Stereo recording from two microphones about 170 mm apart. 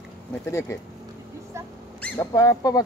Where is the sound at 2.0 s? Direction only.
15° left (ahead or behind).